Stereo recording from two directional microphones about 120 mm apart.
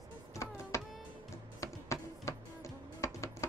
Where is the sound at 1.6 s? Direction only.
25° left (ahead or behind).